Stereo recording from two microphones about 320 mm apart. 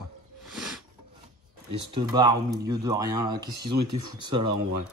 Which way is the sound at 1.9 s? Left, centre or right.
Centre.